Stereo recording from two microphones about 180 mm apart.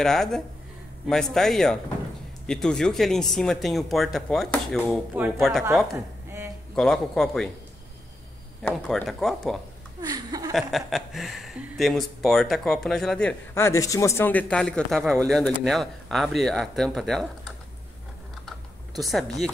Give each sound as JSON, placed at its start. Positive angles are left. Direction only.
{"t": 0.0, "sound": "speech", "side_deg": 5}
{"t": 8.6, "sound": "speech", "side_deg": 5}
{"t": 10.0, "sound": "a sound", "side_deg": -20}
{"t": 10.5, "sound": "speech", "side_deg": 0}
{"t": 18.9, "sound": "speech", "side_deg": 0}